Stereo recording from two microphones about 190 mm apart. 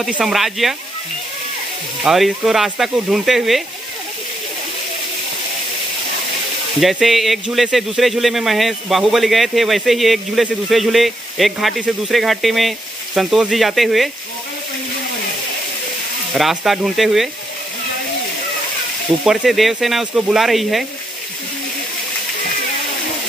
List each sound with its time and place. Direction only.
0.0 s speech: centre (ahead or behind)
2.0 s speech: centre (ahead or behind)
6.8 s speech: centre (ahead or behind)
16.3 s speech: centre (ahead or behind)
19.2 s speech: centre (ahead or behind)